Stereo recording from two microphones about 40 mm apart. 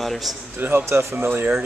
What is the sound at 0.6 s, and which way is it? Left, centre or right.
Speech, right.